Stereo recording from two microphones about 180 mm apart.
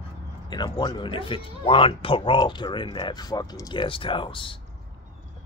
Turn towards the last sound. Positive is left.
turn(degrees=30)  # may be behind; listen again after turning